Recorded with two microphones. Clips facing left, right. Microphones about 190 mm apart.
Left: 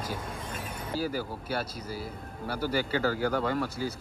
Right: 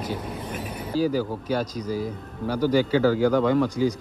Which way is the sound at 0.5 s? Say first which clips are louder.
Right 6 dB; 25° left (ahead or behind).